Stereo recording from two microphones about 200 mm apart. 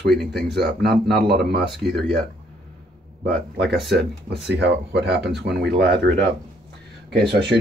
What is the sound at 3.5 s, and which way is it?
Speech, 60° right (ahead or behind).